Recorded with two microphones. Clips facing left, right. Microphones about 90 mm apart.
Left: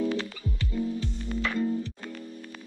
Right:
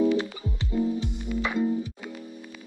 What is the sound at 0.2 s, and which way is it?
Music, 20° right (ahead or behind).